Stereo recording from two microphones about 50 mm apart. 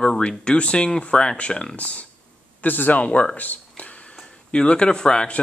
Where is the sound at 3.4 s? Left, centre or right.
Left.